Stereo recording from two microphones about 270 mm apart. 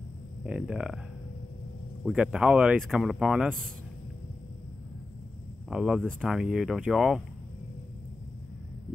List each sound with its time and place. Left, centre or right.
0.4 s speech: centre
2.0 s speech: centre
5.7 s speech: centre